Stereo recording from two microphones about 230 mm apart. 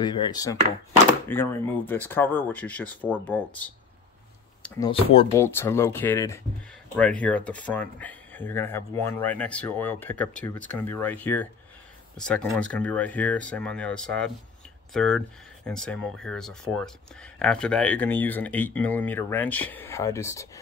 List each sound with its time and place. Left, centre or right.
0.0 s speech: centre
4.9 s speech: left
5.3 s speech: centre